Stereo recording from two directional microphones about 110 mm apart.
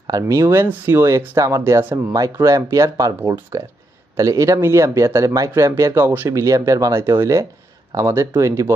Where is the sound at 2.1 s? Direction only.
30° right (ahead or behind).